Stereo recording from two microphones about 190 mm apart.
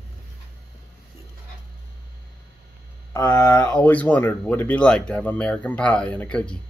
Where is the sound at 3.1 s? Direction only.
15° left (ahead or behind).